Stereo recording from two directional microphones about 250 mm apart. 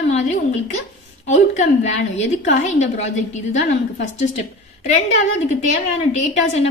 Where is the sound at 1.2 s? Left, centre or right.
Left.